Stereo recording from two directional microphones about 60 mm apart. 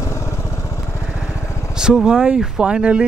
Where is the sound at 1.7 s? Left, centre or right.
Centre.